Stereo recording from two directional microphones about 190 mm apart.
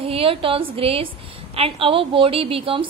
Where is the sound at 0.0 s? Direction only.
30° right (ahead or behind).